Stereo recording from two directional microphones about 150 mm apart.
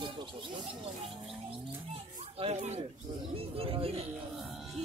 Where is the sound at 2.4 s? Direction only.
50° right (ahead or behind).